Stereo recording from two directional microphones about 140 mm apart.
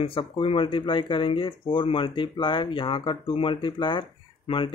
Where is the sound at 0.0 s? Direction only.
40° left (ahead or behind).